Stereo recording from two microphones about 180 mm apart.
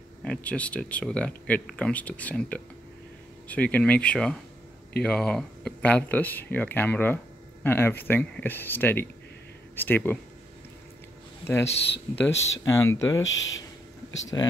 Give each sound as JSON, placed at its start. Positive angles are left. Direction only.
{"t": 0.2, "sound": "speech", "side_deg": 5}
{"t": 11.4, "sound": "speech", "side_deg": 15}
{"t": 11.7, "sound": "speech", "side_deg": 75}
{"t": 12.2, "sound": "speech", "side_deg": 15}
{"t": 13.2, "sound": "speech", "side_deg": 90}
{"t": 14.3, "sound": "speech", "side_deg": 20}